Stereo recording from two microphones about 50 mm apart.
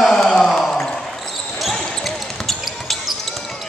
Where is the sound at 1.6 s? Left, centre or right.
Centre.